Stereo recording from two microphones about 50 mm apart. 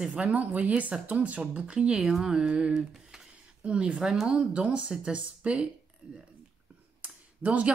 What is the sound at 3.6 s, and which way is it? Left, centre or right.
Speech, right.